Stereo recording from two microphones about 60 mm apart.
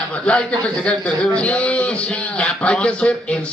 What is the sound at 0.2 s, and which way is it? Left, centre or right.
A man's voice, centre.